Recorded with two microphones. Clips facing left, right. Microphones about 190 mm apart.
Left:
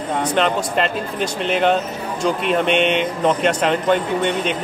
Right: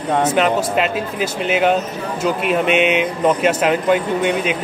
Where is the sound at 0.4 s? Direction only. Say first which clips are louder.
Right 2 dB; 5° right (ahead or behind).